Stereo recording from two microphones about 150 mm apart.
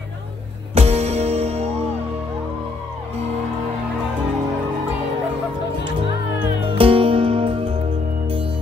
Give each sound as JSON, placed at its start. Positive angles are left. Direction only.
{"t": 0.7, "sound": "music", "side_deg": -45}
{"t": 6.8, "sound": "music", "side_deg": -35}